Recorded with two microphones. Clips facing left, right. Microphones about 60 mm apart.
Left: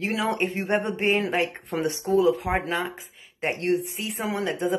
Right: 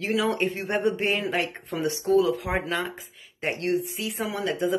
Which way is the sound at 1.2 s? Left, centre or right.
Left.